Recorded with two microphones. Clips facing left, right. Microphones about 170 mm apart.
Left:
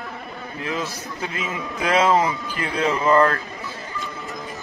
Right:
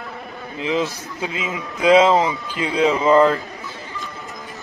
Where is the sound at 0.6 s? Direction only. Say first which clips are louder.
Right 6 dB; 20° right (ahead or behind).